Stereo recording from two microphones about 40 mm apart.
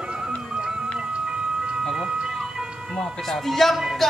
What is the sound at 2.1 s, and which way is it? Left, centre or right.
Music, centre.